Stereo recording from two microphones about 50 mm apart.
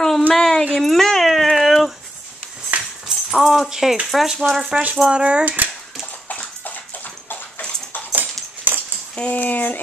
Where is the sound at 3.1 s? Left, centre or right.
Centre.